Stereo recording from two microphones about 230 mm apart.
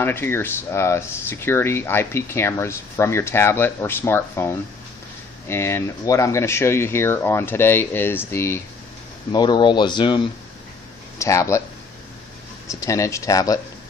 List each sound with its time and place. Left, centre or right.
0.0 s speech: centre
12.6 s speech: centre